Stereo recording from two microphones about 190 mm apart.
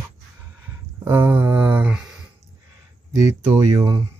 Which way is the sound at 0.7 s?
15° right (ahead or behind).